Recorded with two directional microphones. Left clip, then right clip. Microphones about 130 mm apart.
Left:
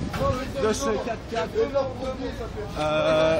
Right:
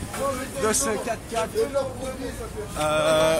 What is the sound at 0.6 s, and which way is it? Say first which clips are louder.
Speech: right 1 dB; 20° right (ahead or behind).